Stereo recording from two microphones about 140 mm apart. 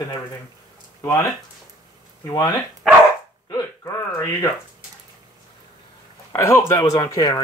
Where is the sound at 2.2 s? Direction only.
25° left (ahead or behind).